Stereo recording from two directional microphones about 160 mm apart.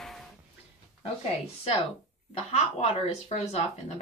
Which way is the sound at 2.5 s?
40° left (ahead or behind).